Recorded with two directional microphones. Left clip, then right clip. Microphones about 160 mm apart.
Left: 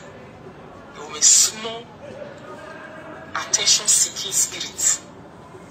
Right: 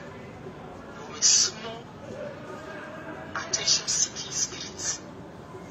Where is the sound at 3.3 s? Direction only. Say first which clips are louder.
Left 7 dB; 45° left (ahead or behind).